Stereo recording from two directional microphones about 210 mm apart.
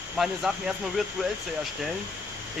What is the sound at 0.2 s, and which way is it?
Speech, centre (ahead or behind).